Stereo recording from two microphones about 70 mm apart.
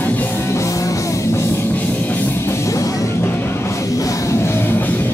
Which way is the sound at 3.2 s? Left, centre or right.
Left.